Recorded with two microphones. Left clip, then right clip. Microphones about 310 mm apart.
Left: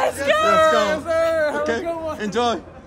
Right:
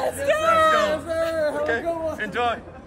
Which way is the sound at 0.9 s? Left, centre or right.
Centre.